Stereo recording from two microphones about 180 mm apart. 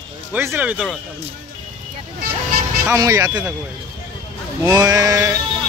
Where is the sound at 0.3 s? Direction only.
10° right (ahead or behind).